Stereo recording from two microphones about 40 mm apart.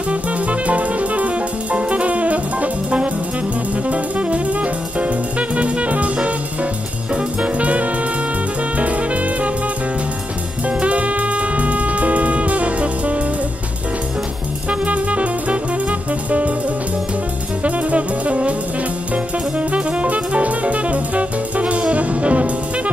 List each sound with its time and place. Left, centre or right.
0.1 s music: right
7.4 s music: right
10.8 s music: right
14.7 s music: right
17.6 s music: right
19.7 s music: right